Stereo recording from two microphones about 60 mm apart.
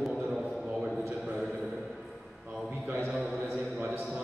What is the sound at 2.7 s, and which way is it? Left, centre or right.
Speech, centre.